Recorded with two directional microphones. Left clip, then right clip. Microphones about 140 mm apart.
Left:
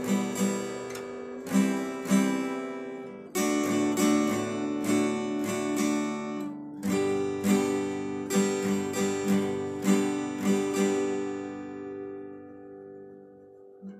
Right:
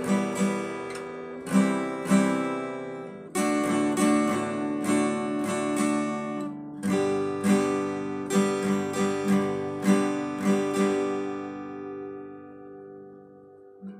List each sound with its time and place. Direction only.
0.0 s guitar: 30° right (ahead or behind)
3.3 s music: 30° right (ahead or behind)